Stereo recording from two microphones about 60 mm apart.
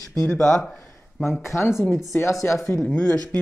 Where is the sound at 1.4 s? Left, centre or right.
Left.